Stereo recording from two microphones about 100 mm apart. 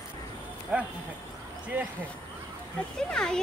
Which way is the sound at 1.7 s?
20° right (ahead or behind).